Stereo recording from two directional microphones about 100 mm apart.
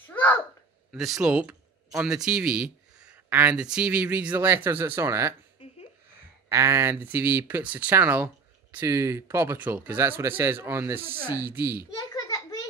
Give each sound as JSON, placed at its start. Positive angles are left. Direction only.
{"t": 0.1, "sound": "babbling", "side_deg": 15}
{"t": 0.9, "sound": "speech", "side_deg": 0}
{"t": 6.5, "sound": "speech", "side_deg": -25}
{"t": 11.9, "sound": "a sound", "side_deg": 35}